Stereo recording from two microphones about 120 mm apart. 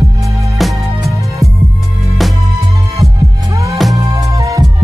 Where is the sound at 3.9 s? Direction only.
30° right (ahead or behind).